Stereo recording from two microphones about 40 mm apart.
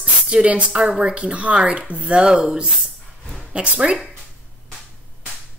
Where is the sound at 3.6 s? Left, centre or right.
Right.